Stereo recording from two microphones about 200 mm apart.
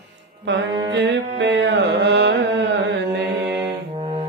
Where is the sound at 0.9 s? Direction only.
60° right (ahead or behind).